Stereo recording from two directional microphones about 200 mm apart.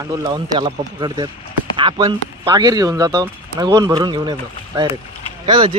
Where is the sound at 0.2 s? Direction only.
20° right (ahead or behind).